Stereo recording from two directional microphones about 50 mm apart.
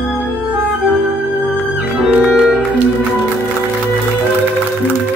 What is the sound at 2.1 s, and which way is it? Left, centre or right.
Music, right.